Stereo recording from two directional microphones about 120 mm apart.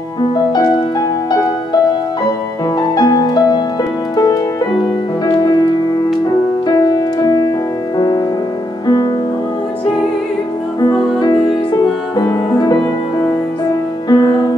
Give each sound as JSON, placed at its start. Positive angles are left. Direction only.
{"t": 0.4, "sound": "music", "side_deg": 35}
{"t": 3.0, "sound": "music", "side_deg": 35}
{"t": 5.2, "sound": "music", "side_deg": 30}
{"t": 6.7, "sound": "music", "side_deg": 30}
{"t": 8.8, "sound": "music", "side_deg": 35}
{"t": 10.8, "sound": "music", "side_deg": 35}
{"t": 14.0, "sound": "music", "side_deg": 35}